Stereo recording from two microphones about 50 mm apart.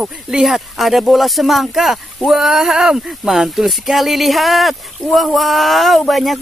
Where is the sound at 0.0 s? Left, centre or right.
Centre.